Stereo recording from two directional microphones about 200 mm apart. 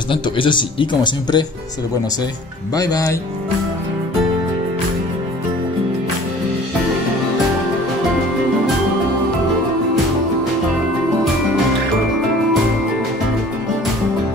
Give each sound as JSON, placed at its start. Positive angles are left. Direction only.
{"t": 0.1, "sound": "speech", "side_deg": 25}
{"t": 2.7, "sound": "speech", "side_deg": 20}